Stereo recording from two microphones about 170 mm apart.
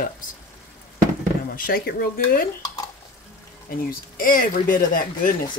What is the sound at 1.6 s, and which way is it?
Speech, 60° left (ahead or behind).